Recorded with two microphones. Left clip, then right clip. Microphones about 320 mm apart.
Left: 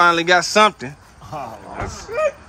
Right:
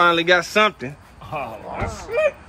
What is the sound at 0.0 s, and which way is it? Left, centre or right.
A man's voice, centre.